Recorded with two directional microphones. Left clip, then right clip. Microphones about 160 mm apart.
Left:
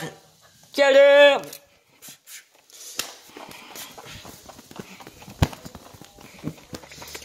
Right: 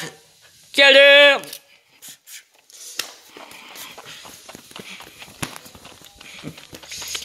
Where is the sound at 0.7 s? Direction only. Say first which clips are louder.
Right 4 dB; 10° right (ahead or behind).